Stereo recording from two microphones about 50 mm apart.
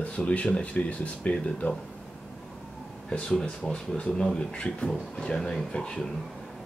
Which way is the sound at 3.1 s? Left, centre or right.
Centre.